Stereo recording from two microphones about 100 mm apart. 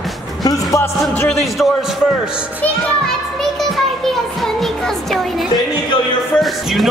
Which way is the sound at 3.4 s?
5° left (ahead or behind).